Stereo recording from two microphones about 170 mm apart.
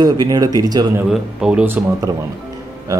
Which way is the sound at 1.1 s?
5° right (ahead or behind).